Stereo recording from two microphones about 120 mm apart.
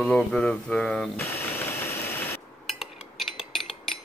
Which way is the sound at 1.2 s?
20° left (ahead or behind).